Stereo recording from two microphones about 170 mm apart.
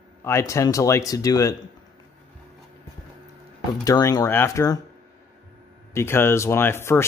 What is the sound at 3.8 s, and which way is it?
Speech, 20° left (ahead or behind).